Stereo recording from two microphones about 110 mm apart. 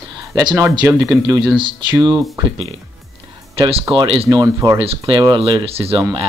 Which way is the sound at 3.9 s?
50° right (ahead or behind).